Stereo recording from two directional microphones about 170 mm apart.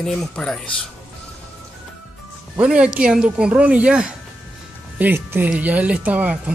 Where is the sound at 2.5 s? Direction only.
5° right (ahead or behind).